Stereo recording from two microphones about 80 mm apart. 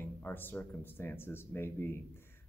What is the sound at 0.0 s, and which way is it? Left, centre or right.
Speech, left.